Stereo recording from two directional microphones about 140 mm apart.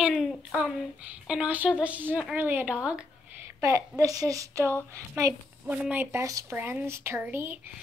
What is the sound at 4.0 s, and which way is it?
Speech, 25° right (ahead or behind).